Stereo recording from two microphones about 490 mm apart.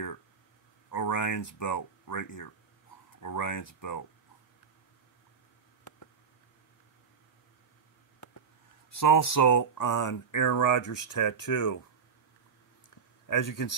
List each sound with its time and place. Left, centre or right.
0.8 s speech: left
8.9 s speech: left
13.3 s speech: left